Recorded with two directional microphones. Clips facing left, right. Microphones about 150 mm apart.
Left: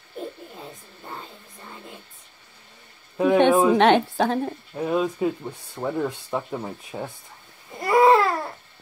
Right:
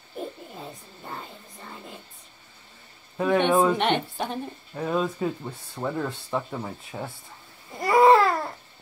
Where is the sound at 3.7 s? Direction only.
90° left.